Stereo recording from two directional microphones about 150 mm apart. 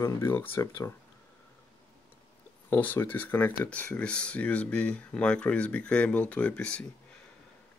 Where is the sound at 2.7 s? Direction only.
10° left (ahead or behind).